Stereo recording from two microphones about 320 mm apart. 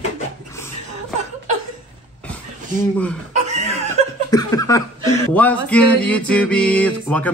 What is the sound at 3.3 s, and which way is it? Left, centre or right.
Chuckle, right.